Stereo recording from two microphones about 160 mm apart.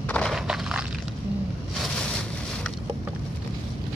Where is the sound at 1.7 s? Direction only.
5° left (ahead or behind).